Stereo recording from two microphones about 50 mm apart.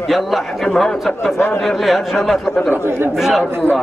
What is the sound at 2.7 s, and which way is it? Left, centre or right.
Speech, right.